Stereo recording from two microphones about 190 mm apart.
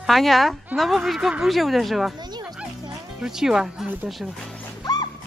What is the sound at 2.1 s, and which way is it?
Bow-wow, 20° right (ahead or behind).